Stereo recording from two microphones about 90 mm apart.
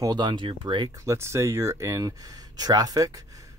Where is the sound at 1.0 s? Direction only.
30° right (ahead or behind).